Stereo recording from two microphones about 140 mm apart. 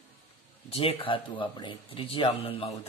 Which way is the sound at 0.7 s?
45° left (ahead or behind).